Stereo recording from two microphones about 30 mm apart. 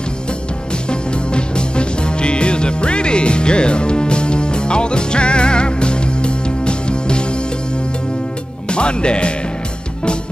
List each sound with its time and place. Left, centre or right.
0.8 s music: left
8.6 s speech: left